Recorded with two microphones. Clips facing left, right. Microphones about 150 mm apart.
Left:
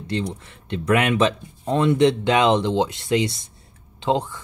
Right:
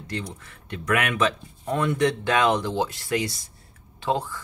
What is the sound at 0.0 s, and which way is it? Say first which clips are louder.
Speech: left 7 dB; 25° left (ahead or behind).